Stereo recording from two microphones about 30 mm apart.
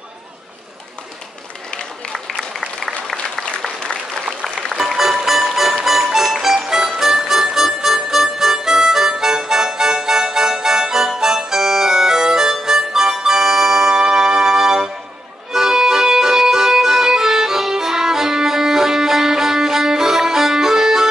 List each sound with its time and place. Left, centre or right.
2.1 s a sound: centre
4.7 s music: centre
12.6 s harmonica: centre
13.2 s music: centre
14.0 s music: right